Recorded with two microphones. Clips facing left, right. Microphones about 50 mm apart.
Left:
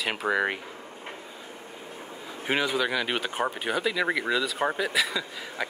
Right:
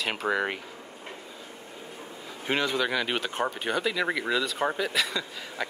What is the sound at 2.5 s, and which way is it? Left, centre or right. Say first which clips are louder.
Speech: left 1 dB; centre.